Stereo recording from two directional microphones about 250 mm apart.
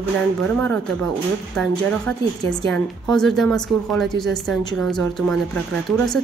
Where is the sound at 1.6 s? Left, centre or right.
Centre.